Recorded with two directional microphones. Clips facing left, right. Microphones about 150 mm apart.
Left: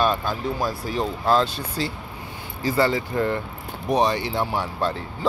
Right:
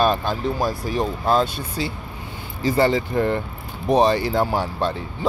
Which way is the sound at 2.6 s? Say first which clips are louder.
Right 3 dB; 20° right (ahead or behind).